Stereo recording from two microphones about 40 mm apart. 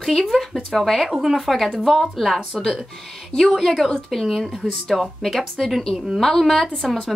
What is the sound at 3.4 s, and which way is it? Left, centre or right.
Speech, centre.